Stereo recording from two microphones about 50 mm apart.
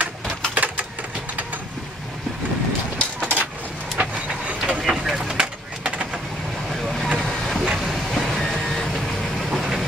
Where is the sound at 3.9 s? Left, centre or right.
Right.